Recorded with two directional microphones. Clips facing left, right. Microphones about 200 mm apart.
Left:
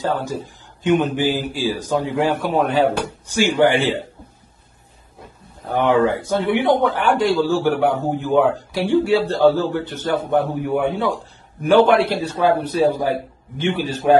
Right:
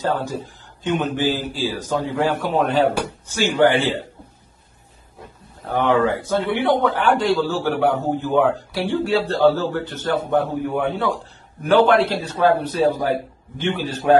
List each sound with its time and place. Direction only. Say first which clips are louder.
0.0 s a man's voice: even; 15° left (ahead or behind)
5.7 s a man's voice: left 2 dB; 15° left (ahead or behind)